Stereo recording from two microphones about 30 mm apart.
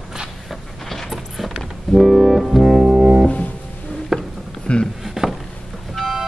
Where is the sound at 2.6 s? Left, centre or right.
Centre.